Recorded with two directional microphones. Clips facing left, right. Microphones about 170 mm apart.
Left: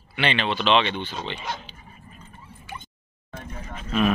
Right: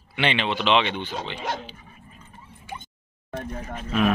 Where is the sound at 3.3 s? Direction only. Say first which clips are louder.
Right 5 dB; 50° right (ahead or behind).